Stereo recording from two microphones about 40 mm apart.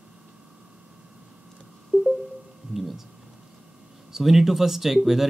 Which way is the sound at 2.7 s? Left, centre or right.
Centre.